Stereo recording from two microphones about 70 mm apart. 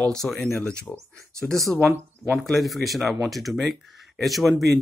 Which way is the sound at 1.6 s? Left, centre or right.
Centre.